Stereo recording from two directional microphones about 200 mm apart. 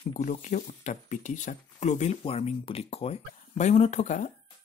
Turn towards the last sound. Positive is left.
turn(degrees=35)  # may be behind; listen again after turning